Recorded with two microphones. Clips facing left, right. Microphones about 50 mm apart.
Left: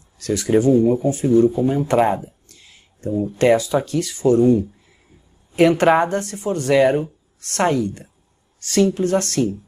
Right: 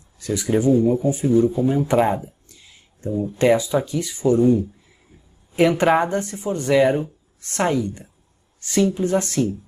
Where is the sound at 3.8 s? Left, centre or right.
Centre.